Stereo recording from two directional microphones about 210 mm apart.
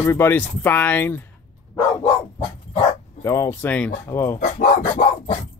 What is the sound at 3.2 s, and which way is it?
Speech, 15° left (ahead or behind).